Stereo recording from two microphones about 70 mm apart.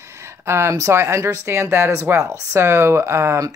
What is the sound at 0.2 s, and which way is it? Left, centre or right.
Speech, right.